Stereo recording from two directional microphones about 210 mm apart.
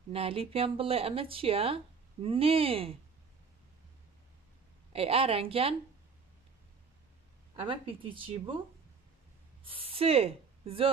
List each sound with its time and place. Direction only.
0.1 s speech: 25° right (ahead or behind)
4.9 s speech: 25° right (ahead or behind)
7.5 s speech: 25° right (ahead or behind)
9.7 s a woman's voice: 25° right (ahead or behind)